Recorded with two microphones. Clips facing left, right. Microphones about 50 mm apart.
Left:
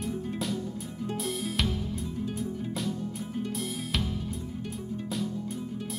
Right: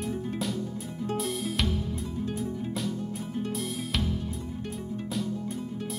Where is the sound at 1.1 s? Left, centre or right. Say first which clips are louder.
Right 1 dB; centre.